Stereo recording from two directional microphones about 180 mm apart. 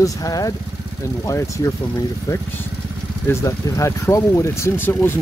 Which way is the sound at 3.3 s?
15° left (ahead or behind).